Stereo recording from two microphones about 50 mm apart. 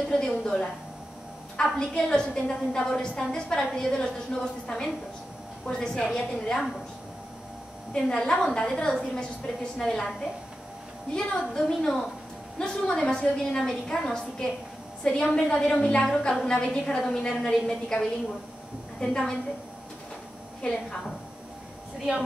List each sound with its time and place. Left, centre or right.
0.1 s a woman's voice: centre
7.9 s a woman's voice: centre
11.1 s a woman's voice: centre